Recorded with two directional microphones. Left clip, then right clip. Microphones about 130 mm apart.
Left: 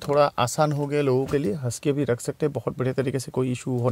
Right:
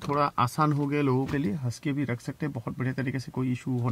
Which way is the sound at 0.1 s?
35° left (ahead or behind).